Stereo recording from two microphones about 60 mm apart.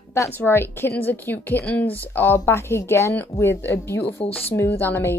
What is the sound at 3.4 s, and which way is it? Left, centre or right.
Speech, left.